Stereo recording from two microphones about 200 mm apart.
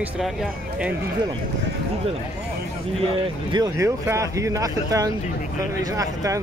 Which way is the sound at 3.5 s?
15° right (ahead or behind).